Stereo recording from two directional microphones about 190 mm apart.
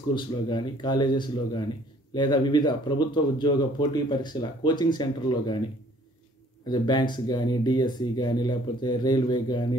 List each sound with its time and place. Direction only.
0.1 s speech: 25° left (ahead or behind)
6.7 s speech: 20° left (ahead or behind)